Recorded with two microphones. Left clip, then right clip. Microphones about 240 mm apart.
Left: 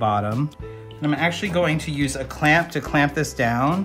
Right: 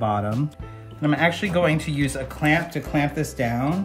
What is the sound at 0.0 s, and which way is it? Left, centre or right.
Speech, centre.